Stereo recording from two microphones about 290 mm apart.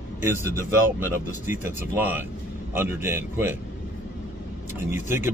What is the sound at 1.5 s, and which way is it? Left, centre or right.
Speech, centre.